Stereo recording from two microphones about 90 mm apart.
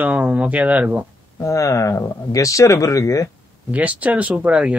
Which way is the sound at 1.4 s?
35° left (ahead or behind).